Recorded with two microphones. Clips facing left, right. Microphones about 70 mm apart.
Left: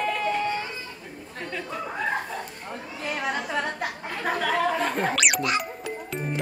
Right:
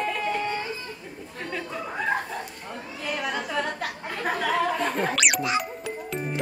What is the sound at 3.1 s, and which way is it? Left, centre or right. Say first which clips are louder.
Chatter: even; left.